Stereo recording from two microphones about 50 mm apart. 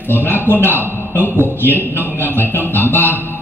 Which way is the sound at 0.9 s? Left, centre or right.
Left.